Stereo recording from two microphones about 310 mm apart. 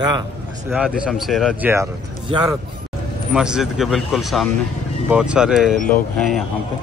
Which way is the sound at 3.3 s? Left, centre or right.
Centre.